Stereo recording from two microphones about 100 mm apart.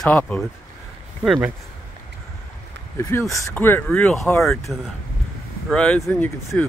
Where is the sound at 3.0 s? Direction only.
25° left (ahead or behind).